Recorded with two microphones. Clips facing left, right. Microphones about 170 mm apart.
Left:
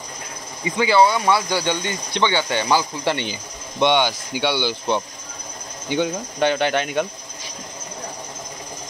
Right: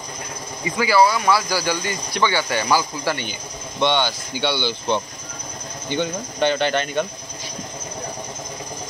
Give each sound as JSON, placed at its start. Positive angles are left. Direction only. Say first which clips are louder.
{"t": 0.7, "sound": "speech", "louder": "left 1 dB", "side_deg": 25}
{"t": 3.8, "sound": "speech", "louder": "left 2 dB", "side_deg": 15}